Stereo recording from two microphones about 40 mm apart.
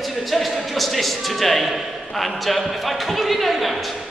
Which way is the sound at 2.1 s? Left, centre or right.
Centre.